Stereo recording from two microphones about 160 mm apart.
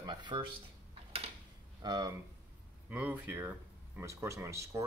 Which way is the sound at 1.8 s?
25° right (ahead or behind).